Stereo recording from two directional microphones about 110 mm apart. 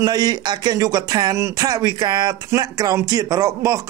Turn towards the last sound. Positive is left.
turn(degrees=-30)  # may be behind; listen again after turning